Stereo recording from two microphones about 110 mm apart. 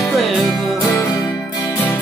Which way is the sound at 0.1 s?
Centre (ahead or behind).